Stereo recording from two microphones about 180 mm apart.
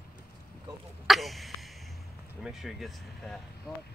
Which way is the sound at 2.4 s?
Centre (ahead or behind).